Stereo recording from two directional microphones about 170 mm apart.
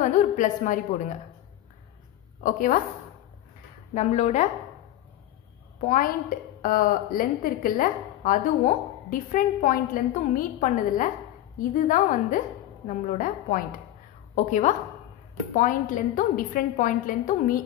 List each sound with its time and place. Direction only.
0.0 s a woman's voice: 45° left (ahead or behind)
2.4 s a woman's voice: 50° left (ahead or behind)
3.9 s a woman's voice: 40° left (ahead or behind)
5.9 s a woman's voice: 55° left (ahead or behind)